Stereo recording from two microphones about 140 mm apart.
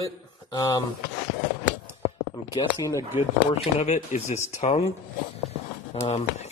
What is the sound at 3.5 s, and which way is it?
Speech, 55° left (ahead or behind).